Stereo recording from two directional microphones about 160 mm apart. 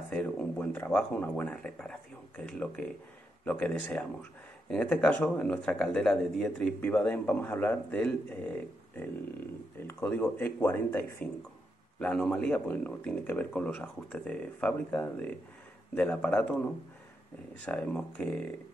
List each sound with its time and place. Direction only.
0.1 s speech: 10° left (ahead or behind)
17.6 s speech: 5° left (ahead or behind)